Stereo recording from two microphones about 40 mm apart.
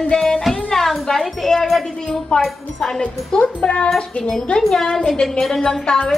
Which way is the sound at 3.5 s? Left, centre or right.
Left.